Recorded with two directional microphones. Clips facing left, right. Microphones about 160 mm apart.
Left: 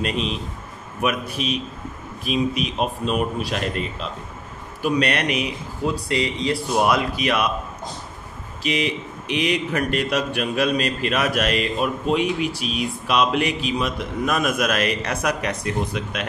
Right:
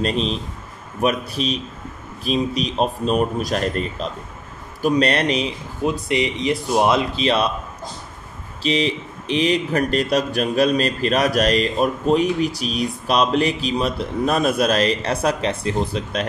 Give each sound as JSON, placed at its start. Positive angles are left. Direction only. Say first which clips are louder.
{"t": 0.0, "sound": "speech", "louder": "right 3 dB", "side_deg": -35}
{"t": 5.8, "sound": "speech", "louder": "right 3 dB", "side_deg": -20}
{"t": 8.6, "sound": "speech", "louder": "right 3 dB", "side_deg": -30}